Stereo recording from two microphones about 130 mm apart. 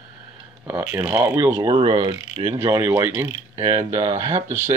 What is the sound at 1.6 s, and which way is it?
Speech, 35° right (ahead or behind).